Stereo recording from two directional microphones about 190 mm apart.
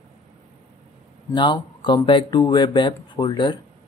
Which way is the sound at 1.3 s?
25° left (ahead or behind).